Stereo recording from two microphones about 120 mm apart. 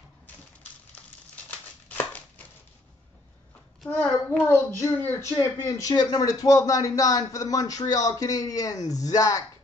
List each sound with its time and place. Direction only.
2.0 s a sound: 15° left (ahead or behind)
3.9 s a child's voice: 10° left (ahead or behind)
4.7 s speech: 25° left (ahead or behind)